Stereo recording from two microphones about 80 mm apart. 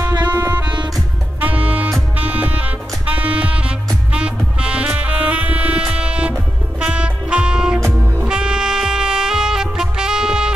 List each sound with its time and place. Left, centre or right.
0.3 s music: right